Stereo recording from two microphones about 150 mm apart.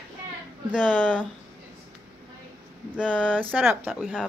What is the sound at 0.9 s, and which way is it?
Speech, 5° left (ahead or behind).